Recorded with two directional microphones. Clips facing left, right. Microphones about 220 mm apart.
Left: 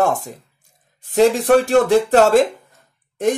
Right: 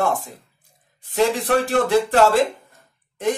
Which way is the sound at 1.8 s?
45° left (ahead or behind).